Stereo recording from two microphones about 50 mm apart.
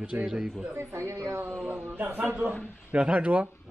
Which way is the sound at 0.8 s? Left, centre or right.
Right.